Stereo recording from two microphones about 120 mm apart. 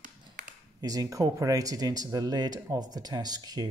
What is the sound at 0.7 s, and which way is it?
Speech, 30° right (ahead or behind).